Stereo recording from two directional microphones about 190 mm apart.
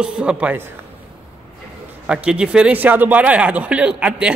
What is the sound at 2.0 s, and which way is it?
A man's voice, 5° right (ahead or behind).